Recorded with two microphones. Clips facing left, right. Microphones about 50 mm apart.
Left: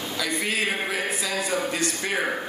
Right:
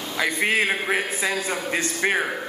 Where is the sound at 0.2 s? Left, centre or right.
Right.